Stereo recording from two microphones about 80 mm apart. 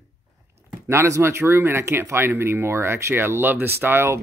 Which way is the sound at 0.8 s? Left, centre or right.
Right.